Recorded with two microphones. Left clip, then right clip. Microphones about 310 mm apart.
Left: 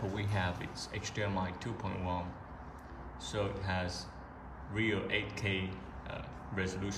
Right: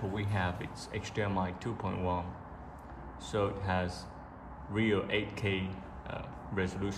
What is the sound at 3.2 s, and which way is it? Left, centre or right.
Speech, centre.